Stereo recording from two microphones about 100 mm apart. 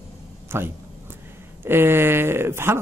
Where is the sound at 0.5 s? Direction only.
20° right (ahead or behind).